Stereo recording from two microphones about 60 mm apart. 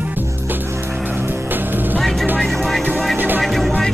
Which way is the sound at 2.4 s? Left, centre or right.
Centre.